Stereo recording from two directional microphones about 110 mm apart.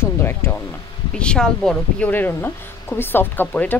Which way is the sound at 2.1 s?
20° left (ahead or behind).